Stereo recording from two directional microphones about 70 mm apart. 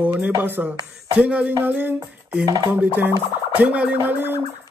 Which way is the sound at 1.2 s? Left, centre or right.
Centre.